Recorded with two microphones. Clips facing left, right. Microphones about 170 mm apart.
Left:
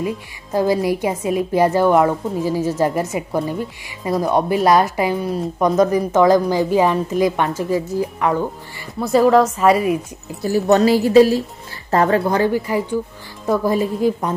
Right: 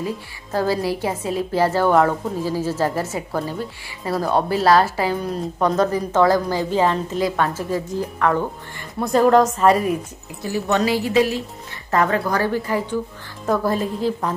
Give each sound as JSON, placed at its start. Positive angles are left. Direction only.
{"t": 0.0, "sound": "a woman's voice", "side_deg": 15}
{"t": 10.4, "sound": "a woman's voice", "side_deg": 40}
{"t": 12.4, "sound": "a woman's voice", "side_deg": 15}